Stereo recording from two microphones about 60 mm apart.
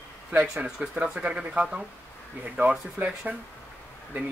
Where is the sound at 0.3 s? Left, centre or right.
Right.